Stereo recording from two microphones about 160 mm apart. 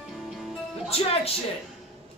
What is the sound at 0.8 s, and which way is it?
Music, 35° left (ahead or behind).